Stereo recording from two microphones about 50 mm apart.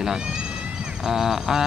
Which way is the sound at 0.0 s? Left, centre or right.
Centre.